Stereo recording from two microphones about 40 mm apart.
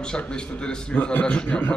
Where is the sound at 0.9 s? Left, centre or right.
Left.